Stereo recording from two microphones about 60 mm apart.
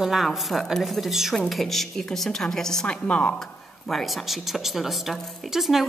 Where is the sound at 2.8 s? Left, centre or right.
Centre.